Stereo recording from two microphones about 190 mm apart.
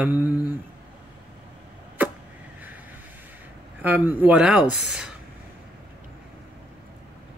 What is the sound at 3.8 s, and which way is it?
Speech, 10° right (ahead or behind).